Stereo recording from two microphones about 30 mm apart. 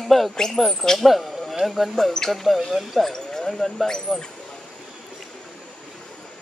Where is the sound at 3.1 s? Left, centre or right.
Left.